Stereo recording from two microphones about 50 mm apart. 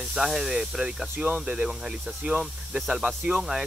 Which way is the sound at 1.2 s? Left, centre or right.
Right.